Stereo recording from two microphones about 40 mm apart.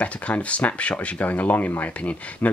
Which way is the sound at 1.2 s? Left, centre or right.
Left.